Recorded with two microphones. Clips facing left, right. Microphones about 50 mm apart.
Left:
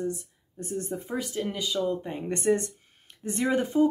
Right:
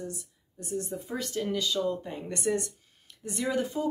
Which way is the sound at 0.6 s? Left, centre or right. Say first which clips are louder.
Left 2 dB; left.